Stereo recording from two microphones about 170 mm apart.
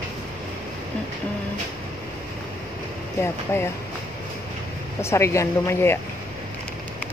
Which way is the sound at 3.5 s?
15° left (ahead or behind).